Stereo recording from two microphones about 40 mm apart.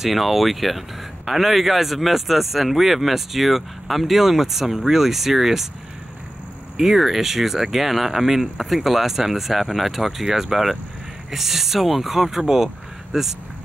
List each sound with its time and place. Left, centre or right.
0.0 s speech: centre
6.8 s speech: centre